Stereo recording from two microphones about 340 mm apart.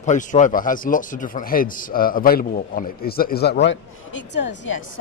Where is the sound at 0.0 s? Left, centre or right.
Left.